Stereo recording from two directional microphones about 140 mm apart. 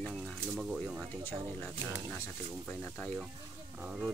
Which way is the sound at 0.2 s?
5° right (ahead or behind).